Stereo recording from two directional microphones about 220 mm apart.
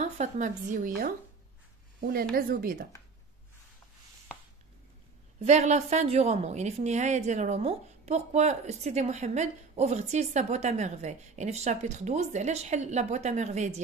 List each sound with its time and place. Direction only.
0.0 s a woman's voice: 35° right (ahead or behind)
2.3 s a woman's voice: 40° right (ahead or behind)
5.4 s a woman's voice: 30° right (ahead or behind)